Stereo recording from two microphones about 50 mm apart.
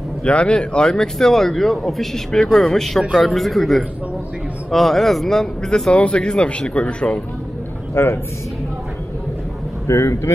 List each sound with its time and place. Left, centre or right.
0.2 s a man's voice: left
5.9 s speech: left
7.9 s speech: left
9.8 s speech: left